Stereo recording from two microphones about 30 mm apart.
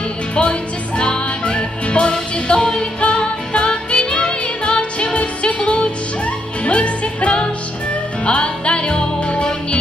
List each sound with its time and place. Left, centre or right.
0.4 s music: left